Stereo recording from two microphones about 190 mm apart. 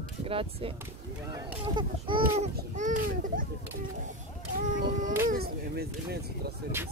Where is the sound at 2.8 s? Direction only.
45° right (ahead or behind).